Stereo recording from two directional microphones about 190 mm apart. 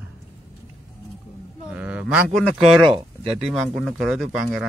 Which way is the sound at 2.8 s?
30° right (ahead or behind).